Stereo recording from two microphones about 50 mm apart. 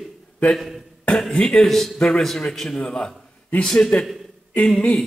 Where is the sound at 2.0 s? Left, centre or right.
Centre.